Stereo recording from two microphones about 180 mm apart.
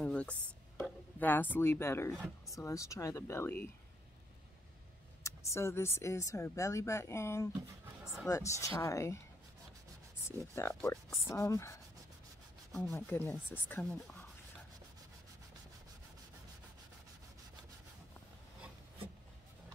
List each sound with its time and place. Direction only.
0.0 s a sound: 5° left (ahead or behind)
2.4 s speech: 15° left (ahead or behind)
5.2 s speech: 15° left (ahead or behind)
10.2 s speech: 15° left (ahead or behind)
12.9 s speech: 10° left (ahead or behind)